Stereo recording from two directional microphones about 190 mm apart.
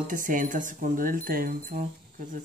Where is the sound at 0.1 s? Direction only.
45° right (ahead or behind).